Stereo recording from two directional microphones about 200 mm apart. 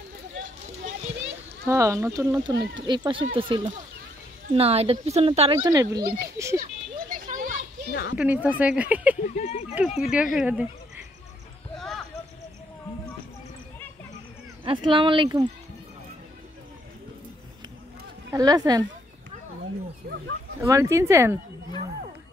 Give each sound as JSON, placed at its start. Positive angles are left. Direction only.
{"t": 1.7, "sound": "speech", "side_deg": -15}
{"t": 7.1, "sound": "children playing", "side_deg": -45}
{"t": 7.9, "sound": "speech", "side_deg": 50}
{"t": 8.2, "sound": "speech", "side_deg": -5}
{"t": 9.3, "sound": "speech", "side_deg": 30}
{"t": 9.8, "sound": "speech", "side_deg": -5}
{"t": 11.7, "sound": "a sound", "side_deg": 0}
{"t": 14.6, "sound": "speech", "side_deg": -25}
{"t": 18.3, "sound": "speech", "side_deg": -20}
{"t": 20.6, "sound": "speech", "side_deg": -15}